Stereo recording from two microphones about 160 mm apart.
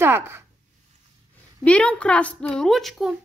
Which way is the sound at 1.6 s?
5° left (ahead or behind).